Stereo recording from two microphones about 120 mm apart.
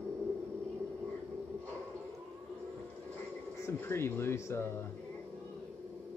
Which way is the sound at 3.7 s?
20° left (ahead or behind).